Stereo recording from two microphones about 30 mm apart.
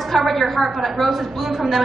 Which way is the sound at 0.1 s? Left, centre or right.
Centre.